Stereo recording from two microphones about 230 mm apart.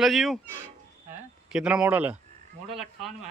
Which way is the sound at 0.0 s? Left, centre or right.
Centre.